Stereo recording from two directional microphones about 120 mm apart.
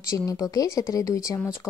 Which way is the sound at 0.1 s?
30° left (ahead or behind).